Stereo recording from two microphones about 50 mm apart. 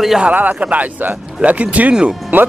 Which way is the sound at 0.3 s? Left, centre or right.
Right.